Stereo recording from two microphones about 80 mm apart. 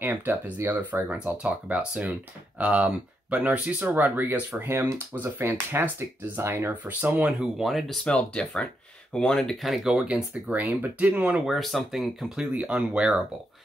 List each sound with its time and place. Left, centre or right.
0.0 s speech: right
1.0 s speech: centre
7.5 s speech: centre
8.0 s speech: centre
11.4 s speech: centre
12.5 s speech: centre